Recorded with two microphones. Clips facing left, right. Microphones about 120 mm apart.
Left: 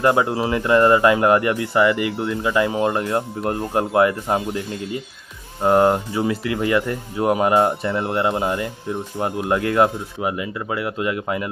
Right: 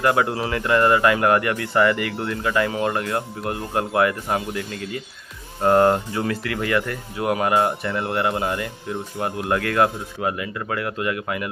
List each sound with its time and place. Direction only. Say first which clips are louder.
0.0 s speech: left 2 dB; 20° left (ahead or behind)